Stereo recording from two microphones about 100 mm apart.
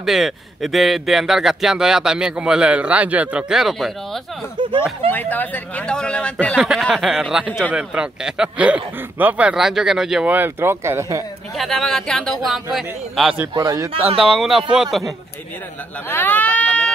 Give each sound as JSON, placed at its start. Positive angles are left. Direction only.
{"t": 0.0, "sound": "speech", "side_deg": -5}
{"t": 5.3, "sound": "speech", "side_deg": 15}
{"t": 6.6, "sound": "speech", "side_deg": 0}
{"t": 10.2, "sound": "speech", "side_deg": -20}
{"t": 11.5, "sound": "speech", "side_deg": 0}
{"t": 13.6, "sound": "a man's voice", "side_deg": -35}
{"t": 13.9, "sound": "speech", "side_deg": -70}
{"t": 14.2, "sound": "speech", "side_deg": -5}
{"t": 16.1, "sound": "a sound", "side_deg": 20}